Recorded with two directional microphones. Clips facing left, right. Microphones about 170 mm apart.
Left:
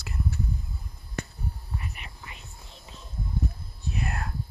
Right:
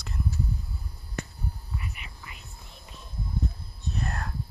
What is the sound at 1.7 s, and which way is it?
Whispering, 35° left (ahead or behind).